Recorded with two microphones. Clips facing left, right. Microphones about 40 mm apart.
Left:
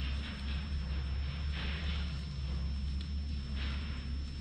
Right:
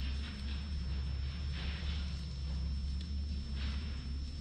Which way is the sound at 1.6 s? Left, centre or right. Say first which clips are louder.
Left 4 dB; left.